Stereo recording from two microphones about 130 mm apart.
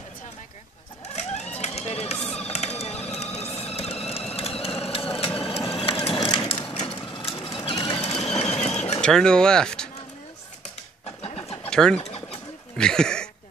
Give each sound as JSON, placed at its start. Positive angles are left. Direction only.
{"t": 1.6, "sound": "a sound", "side_deg": 55}
{"t": 4.4, "sound": "vehicle", "side_deg": 50}
{"t": 6.1, "sound": "crushing", "side_deg": 35}
{"t": 6.8, "sound": "a sound", "side_deg": 40}
{"t": 7.6, "sound": "sewing machine", "side_deg": 40}
{"t": 8.0, "sound": "a sound", "side_deg": 55}
{"t": 9.0, "sound": "speech", "side_deg": 5}
{"t": 11.1, "sound": "vehicle", "side_deg": 50}
{"t": 11.7, "sound": "speech", "side_deg": 5}
{"t": 12.0, "sound": "bird", "side_deg": 50}
{"t": 12.7, "sound": "speech", "side_deg": 5}